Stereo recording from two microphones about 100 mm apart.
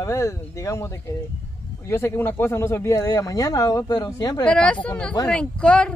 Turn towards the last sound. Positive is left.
turn(degrees=10)  # may be behind; listen again after turning